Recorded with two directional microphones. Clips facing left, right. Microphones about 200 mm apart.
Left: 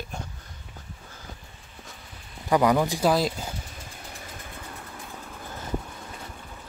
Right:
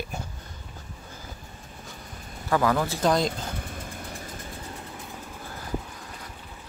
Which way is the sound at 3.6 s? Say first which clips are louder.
Right 5 dB; 55° right (ahead or behind).